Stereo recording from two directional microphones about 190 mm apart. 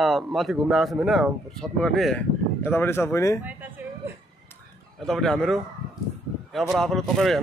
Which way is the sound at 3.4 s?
10° right (ahead or behind).